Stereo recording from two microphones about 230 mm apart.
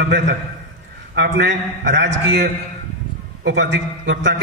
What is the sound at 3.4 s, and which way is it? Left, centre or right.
Speech, right.